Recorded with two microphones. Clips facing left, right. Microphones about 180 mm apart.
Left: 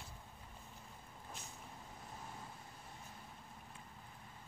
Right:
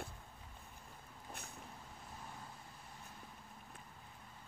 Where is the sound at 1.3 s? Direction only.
60° right (ahead or behind).